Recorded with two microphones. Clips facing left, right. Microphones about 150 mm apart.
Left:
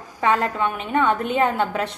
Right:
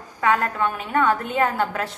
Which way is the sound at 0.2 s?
20° left (ahead or behind).